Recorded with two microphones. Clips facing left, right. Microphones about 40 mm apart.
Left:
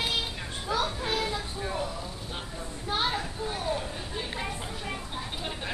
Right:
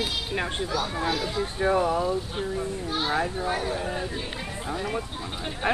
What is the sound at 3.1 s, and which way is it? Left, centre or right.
Speech, right.